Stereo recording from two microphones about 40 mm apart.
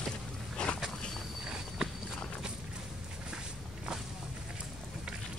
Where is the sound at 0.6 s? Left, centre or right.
Left.